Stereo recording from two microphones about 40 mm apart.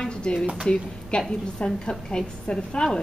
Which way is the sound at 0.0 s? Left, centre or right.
Left.